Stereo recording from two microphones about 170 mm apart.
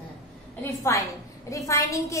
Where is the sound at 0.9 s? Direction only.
15° left (ahead or behind).